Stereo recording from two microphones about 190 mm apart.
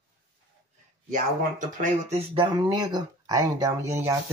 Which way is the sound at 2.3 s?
20° right (ahead or behind).